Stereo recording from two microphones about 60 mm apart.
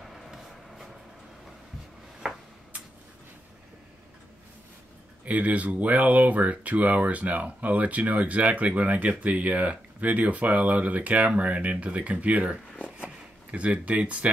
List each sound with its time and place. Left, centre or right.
0.0 s vehicle: centre
5.2 s speech: right